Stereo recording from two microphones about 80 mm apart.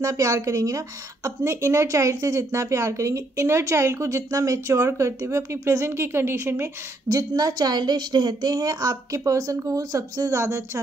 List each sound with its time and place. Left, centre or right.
0.0 s a woman's voice: right
7.1 s a woman's voice: right